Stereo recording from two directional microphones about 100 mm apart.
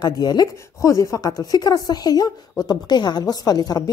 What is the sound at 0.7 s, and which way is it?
A woman's voice, 30° left (ahead or behind).